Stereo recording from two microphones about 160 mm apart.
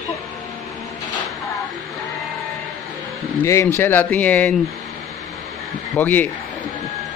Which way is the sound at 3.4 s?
20° left (ahead or behind).